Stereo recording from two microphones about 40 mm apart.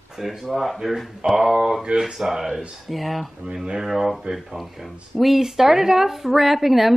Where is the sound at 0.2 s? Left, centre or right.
Centre.